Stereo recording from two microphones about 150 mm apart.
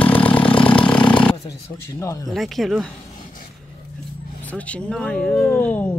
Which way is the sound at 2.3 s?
Centre (ahead or behind).